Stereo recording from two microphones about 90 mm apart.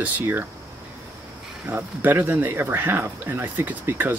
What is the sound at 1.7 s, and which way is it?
Speech, 20° right (ahead or behind).